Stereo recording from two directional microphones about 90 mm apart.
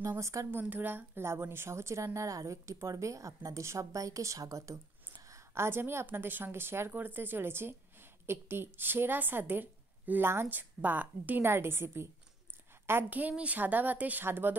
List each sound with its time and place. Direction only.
0.0 s a woman's voice: 35° right (ahead or behind)
0.5 s speech: 20° right (ahead or behind)